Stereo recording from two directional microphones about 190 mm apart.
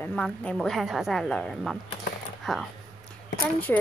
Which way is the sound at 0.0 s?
5° left (ahead or behind).